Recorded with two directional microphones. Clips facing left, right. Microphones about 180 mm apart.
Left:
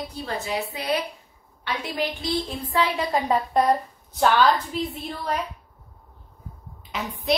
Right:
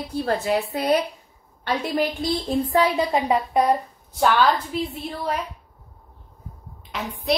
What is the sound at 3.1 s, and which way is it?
Speech, 15° right (ahead or behind).